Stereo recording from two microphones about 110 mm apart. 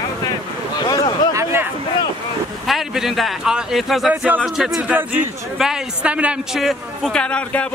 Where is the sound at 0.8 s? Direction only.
40° left (ahead or behind).